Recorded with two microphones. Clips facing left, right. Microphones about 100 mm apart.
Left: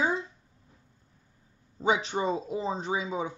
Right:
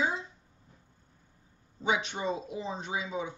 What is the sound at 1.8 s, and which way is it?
A woman's voice, 35° left (ahead or behind).